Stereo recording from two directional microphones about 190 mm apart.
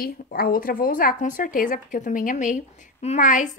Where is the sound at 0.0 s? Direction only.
50° left (ahead or behind).